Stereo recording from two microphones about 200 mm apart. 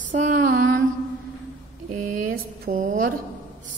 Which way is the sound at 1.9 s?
45° right (ahead or behind).